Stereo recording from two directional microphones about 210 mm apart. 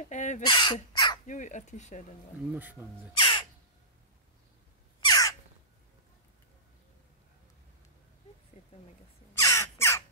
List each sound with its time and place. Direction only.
0.0 s crow: 35° left (ahead or behind)
0.5 s speech: 20° left (ahead or behind)
1.2 s speech: 35° left (ahead or behind)
2.5 s speech: 10° right (ahead or behind)
3.2 s crow: 25° left (ahead or behind)
5.0 s crow: 20° left (ahead or behind)
9.4 s crow: 15° left (ahead or behind)